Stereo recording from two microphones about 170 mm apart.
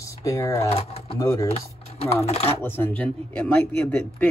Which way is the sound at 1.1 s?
20° left (ahead or behind).